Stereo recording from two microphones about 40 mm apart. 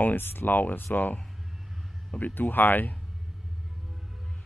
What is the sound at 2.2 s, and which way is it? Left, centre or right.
Speech, left.